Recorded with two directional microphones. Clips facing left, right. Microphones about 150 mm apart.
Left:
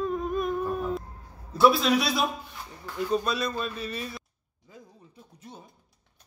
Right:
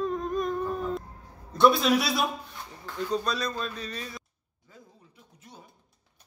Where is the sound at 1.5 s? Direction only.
Centre (ahead or behind).